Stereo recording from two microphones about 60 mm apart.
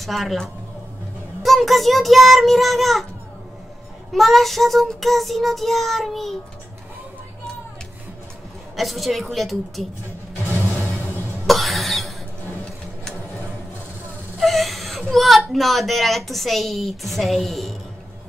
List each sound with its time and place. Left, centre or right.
0.0 s a woman's voice: centre
4.1 s a woman's voice: centre
8.7 s a woman's voice: centre
10.7 s music: left
11.4 s cough: centre
14.4 s whimper: centre
15.5 s a woman's voice: centre